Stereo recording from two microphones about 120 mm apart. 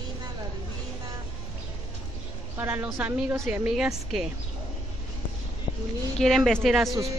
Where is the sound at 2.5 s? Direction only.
15° right (ahead or behind).